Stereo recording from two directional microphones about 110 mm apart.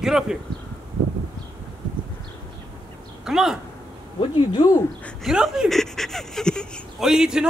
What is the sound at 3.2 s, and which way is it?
Speech, 5° right (ahead or behind).